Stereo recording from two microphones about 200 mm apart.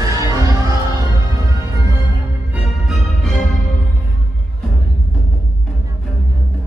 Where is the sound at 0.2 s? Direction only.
15° right (ahead or behind).